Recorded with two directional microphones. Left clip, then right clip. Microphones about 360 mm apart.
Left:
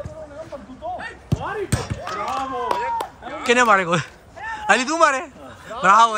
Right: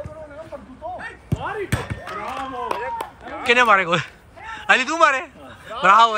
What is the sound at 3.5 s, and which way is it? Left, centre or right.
A man's voice, centre.